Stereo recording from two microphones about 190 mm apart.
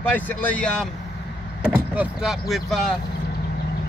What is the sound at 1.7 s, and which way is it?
Speech, 5° right (ahead or behind).